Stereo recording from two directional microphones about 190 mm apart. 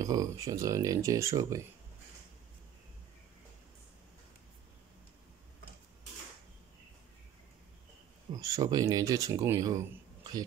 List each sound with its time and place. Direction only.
0.0 s speech: 20° right (ahead or behind)
8.3 s speech: 20° right (ahead or behind)